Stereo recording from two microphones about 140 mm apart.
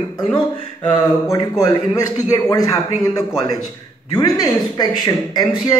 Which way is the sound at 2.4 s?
25° left (ahead or behind).